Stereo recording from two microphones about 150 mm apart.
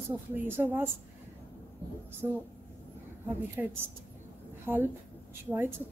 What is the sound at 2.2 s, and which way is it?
Speech, 20° right (ahead or behind).